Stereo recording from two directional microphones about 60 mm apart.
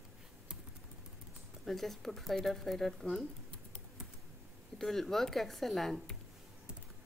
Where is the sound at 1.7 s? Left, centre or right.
Centre.